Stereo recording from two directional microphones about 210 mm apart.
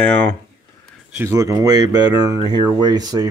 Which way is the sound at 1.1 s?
15° right (ahead or behind).